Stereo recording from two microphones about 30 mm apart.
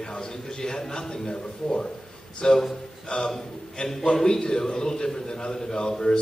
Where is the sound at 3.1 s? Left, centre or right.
Left.